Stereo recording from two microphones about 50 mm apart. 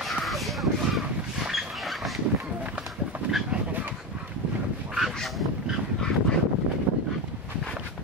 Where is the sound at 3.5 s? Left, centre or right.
Right.